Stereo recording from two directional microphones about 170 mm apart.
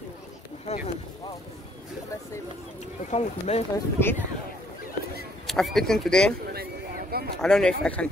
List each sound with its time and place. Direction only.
0.7 s speech: 40° left (ahead or behind)
3.1 s speech: 40° left (ahead or behind)
3.7 s speech: 15° left (ahead or behind)
5.5 s speech: centre (ahead or behind)
6.5 s a sound: 65° right (ahead or behind)
7.4 s speech: 5° left (ahead or behind)